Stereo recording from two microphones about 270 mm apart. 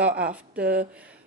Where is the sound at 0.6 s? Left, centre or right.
Right.